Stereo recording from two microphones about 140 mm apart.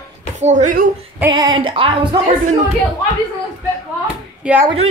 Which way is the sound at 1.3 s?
35° right (ahead or behind).